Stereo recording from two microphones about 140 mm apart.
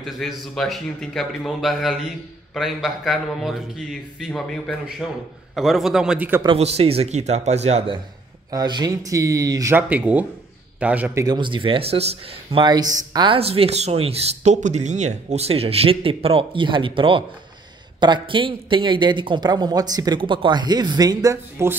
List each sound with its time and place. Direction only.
0.0 s a man's voice: centre (ahead or behind)
6.4 s speech: 45° right (ahead or behind)
8.5 s speech: 30° right (ahead or behind)
9.8 s speech: 10° right (ahead or behind)
11.1 s speech: 30° right (ahead or behind)
13.4 s speech: 45° right (ahead or behind); by 21.7 s 20° right (ahead or behind)